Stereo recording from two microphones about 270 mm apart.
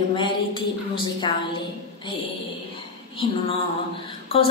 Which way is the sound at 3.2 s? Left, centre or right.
Centre.